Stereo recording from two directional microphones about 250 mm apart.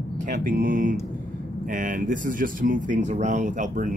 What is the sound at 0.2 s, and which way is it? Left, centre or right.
Speech, right.